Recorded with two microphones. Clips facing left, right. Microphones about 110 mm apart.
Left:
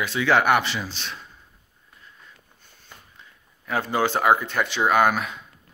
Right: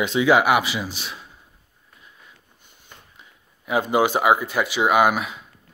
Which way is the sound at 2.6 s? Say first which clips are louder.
Even; 15° right (ahead or behind).